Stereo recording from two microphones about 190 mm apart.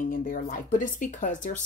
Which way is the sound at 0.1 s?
45° left (ahead or behind).